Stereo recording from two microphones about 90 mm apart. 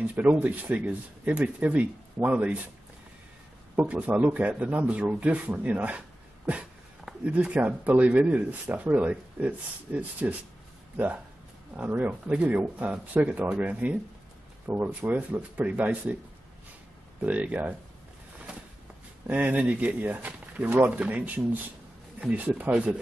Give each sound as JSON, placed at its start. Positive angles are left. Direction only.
{"t": 0.1, "sound": "a man's voice", "side_deg": -15}
{"t": 3.7, "sound": "a man's voice", "side_deg": -15}
{"t": 11.7, "sound": "a man's voice", "side_deg": -20}
{"t": 17.2, "sound": "a man's voice", "side_deg": -15}
{"t": 19.2, "sound": "a man's voice", "side_deg": -15}
{"t": 22.2, "sound": "a man's voice", "side_deg": -15}